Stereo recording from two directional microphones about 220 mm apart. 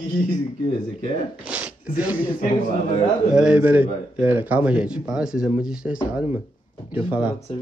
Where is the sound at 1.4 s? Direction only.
5° right (ahead or behind).